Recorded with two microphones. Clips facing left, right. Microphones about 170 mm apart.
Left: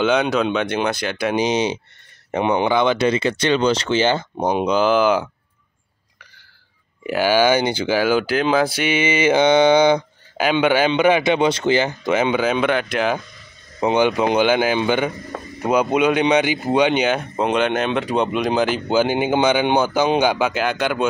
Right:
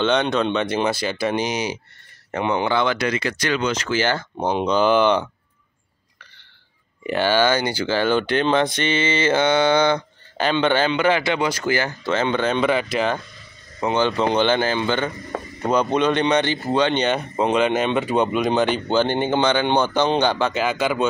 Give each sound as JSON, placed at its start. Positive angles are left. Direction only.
{"t": 0.0, "sound": "speech", "side_deg": 5}
{"t": 1.3, "sound": "speech", "side_deg": 20}
{"t": 4.7, "sound": "speech", "side_deg": 0}
{"t": 7.1, "sound": "speech", "side_deg": 10}
{"t": 13.7, "sound": "speech", "side_deg": 15}
{"t": 20.6, "sound": "speech", "side_deg": 0}